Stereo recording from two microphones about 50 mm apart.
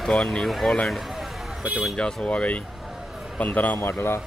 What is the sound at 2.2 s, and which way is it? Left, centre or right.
A man's voice, left.